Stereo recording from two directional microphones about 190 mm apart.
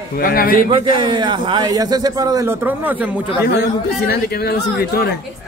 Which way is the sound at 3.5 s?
55° left (ahead or behind).